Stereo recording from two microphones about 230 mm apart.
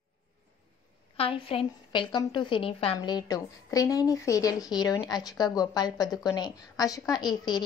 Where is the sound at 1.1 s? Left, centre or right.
Left.